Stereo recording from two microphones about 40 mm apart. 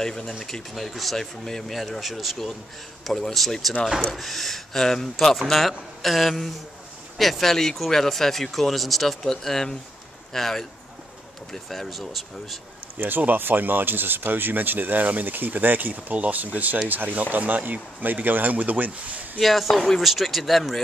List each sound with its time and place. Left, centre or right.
0.0 s speech: centre
13.0 s speech: right
19.4 s speech: centre